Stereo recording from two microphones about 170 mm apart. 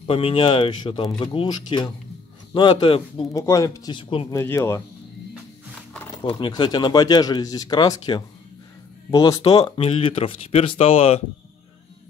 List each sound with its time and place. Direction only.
0.0 s speech: 35° left (ahead or behind)
3.3 s speech: 20° left (ahead or behind)
4.3 s speech: 15° left (ahead or behind)
6.2 s speech: 30° left (ahead or behind)